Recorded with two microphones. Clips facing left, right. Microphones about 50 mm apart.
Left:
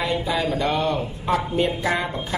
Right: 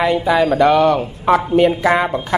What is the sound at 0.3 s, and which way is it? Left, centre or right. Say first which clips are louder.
A woman's voice: right 12 dB; right.